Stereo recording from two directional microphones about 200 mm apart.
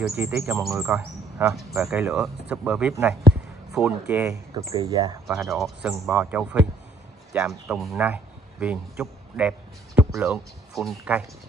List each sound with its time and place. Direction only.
0.2 s speech: 10° right (ahead or behind)
1.5 s speech: centre (ahead or behind); by 5.1 s 20° right (ahead or behind)
5.2 s speech: centre (ahead or behind)